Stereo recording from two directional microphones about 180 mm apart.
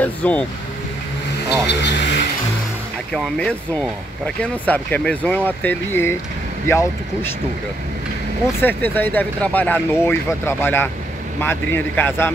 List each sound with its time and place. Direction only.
0.0 s speech: 10° left (ahead or behind)
1.7 s speech: 80° left
3.1 s speech: 5° left (ahead or behind)
8.6 s speech: 10° left (ahead or behind)